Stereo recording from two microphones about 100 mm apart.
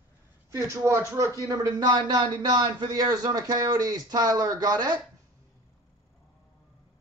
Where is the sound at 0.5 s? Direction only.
30° right (ahead or behind).